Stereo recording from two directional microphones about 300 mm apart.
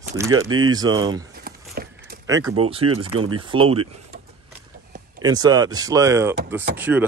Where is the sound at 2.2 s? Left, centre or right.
Centre.